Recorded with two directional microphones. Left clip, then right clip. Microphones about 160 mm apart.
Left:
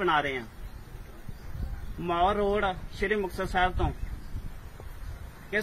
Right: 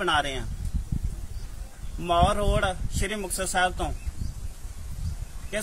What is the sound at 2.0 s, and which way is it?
A man's voice, 40° right (ahead or behind).